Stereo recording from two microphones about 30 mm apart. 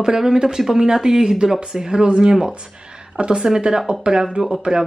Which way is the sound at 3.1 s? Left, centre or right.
Right.